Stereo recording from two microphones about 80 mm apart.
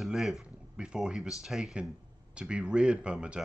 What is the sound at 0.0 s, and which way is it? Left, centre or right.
Speech, centre.